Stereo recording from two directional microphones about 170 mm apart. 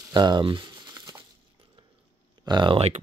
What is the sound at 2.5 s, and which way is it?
Speech, 30° right (ahead or behind).